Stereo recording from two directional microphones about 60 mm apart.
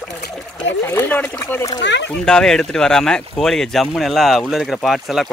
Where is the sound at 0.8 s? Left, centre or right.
Left.